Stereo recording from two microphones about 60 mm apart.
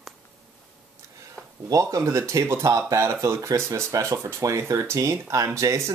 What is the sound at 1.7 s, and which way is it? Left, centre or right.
Speech, right.